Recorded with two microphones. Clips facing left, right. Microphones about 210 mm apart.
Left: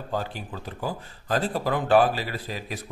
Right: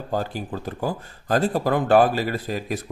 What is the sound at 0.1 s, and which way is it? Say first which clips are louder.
Speech: right 5 dB; 45° right (ahead or behind).